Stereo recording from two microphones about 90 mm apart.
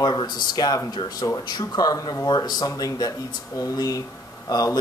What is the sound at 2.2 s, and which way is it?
A man's voice, 50° left (ahead or behind).